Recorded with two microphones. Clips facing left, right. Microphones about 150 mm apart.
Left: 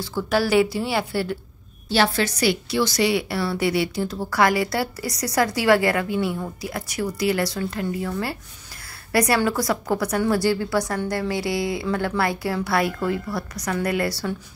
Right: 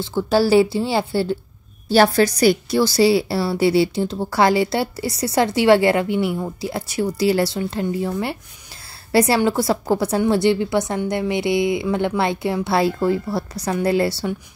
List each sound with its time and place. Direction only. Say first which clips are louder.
0.0 s a woman's voice: right 5 dB; 25° right (ahead or behind)
1.9 s a woman's voice: right 6 dB; 40° right (ahead or behind); by 14.3 s 25° right (ahead or behind)